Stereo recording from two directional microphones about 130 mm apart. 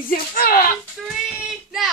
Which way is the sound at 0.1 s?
90° left.